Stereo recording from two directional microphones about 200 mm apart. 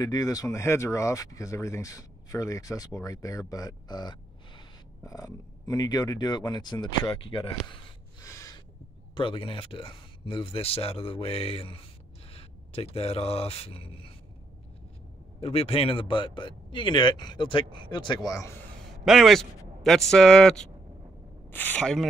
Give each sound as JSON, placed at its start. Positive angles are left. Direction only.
{"t": 0.0, "sound": "speech", "side_deg": 20}
{"t": 15.4, "sound": "speech", "side_deg": 30}
{"t": 19.0, "sound": "speech", "side_deg": 0}